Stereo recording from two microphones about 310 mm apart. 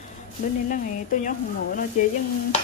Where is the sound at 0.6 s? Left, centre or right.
Left.